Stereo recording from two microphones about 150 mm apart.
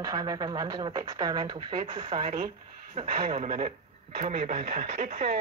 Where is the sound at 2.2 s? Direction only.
70° right (ahead or behind).